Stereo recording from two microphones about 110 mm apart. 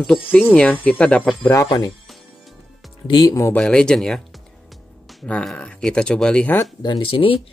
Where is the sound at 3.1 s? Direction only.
40° left (ahead or behind).